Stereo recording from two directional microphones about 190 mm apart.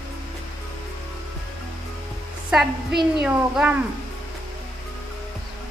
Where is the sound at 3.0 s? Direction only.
Centre (ahead or behind).